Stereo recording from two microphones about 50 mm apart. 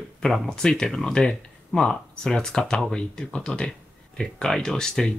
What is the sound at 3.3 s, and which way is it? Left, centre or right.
Speech, centre.